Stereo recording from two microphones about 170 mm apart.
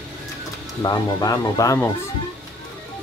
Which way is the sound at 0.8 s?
20° left (ahead or behind).